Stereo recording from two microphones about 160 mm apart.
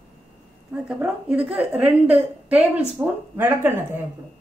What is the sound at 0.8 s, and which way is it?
A woman's voice, 5° right (ahead or behind).